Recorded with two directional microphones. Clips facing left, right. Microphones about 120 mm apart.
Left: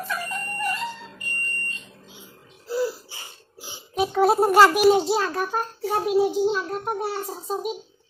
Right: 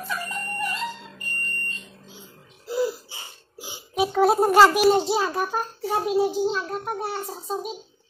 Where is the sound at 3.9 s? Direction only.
5° right (ahead or behind).